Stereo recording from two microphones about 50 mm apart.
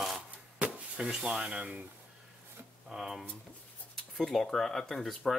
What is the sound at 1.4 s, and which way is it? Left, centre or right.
Speech, right.